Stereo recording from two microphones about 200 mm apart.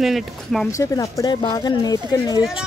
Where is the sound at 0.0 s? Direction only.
Centre (ahead or behind).